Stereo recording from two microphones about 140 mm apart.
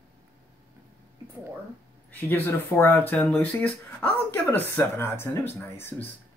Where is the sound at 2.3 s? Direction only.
15° left (ahead or behind).